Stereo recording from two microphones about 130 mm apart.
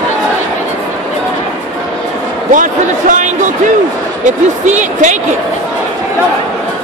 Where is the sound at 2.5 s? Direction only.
85° right.